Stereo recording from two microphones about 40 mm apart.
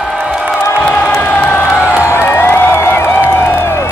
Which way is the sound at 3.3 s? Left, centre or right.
Left.